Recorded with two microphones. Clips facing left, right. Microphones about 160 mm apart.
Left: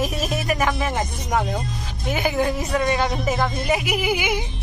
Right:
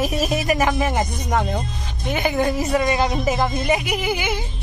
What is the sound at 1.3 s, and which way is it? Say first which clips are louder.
Speech: left 2 dB; 5° left (ahead or behind).